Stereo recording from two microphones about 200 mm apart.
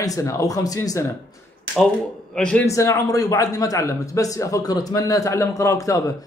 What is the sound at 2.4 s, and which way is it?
A man's voice, 5° left (ahead or behind).